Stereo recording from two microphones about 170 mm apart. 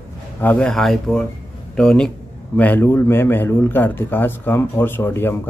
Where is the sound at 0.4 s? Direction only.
10° left (ahead or behind).